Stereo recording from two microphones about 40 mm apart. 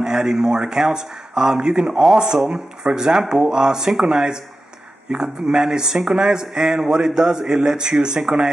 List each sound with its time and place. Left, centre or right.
0.0 s speech: centre